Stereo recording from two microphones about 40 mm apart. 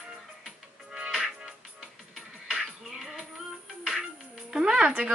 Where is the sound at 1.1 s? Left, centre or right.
Centre.